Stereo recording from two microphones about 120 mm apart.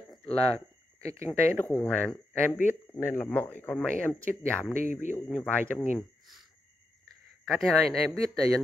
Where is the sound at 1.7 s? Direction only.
10° left (ahead or behind).